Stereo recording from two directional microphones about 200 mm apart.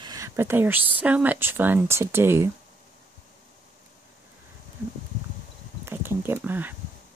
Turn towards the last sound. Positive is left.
turn(degrees=-10)  # may be behind; listen again after turning